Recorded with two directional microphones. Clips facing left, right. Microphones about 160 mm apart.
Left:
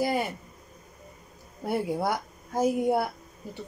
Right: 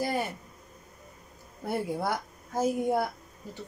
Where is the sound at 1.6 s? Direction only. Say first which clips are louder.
Left 3 dB; 15° left (ahead or behind).